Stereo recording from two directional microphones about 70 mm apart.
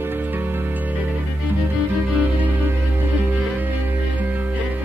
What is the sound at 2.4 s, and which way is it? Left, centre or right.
Music, right.